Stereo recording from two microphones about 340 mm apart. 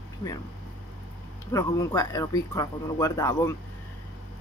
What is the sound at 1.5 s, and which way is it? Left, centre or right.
Speech, centre.